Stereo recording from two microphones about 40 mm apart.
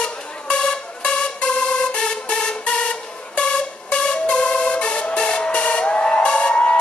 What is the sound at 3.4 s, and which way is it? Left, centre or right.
Music, left.